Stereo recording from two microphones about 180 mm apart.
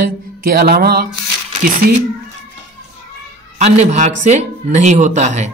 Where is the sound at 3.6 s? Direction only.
40° right (ahead or behind).